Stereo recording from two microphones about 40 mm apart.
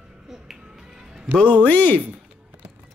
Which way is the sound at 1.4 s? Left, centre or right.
Left.